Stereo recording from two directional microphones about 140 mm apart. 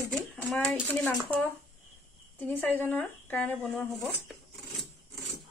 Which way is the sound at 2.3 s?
15° left (ahead or behind).